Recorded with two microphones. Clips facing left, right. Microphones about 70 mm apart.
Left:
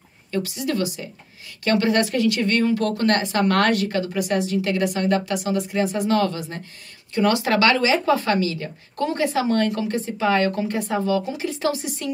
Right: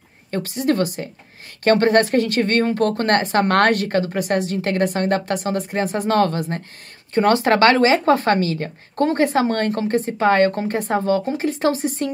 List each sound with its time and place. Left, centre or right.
0.3 s speech: right